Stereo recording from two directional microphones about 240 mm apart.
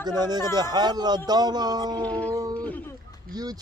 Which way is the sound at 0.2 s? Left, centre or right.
Centre.